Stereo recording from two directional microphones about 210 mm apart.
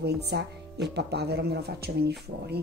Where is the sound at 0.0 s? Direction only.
50° right (ahead or behind).